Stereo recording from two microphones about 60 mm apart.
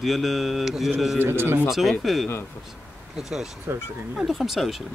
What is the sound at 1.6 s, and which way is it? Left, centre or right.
Speech, centre.